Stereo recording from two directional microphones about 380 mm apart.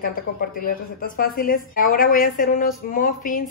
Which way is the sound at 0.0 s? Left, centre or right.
Left.